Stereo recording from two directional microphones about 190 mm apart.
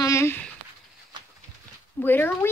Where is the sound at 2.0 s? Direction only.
10° left (ahead or behind).